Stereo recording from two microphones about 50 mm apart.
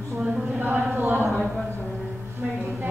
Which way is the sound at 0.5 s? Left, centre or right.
Right.